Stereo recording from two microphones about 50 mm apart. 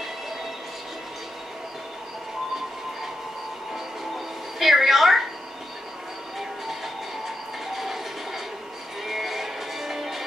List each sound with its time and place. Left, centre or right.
4.6 s a sound: centre
7.6 s train: centre
9.0 s music: centre